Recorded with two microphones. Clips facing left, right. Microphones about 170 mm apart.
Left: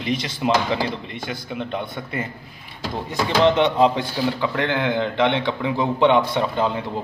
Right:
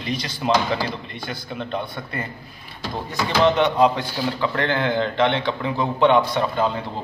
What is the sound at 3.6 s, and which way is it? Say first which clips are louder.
A man's voice: even; 25° left (ahead or behind).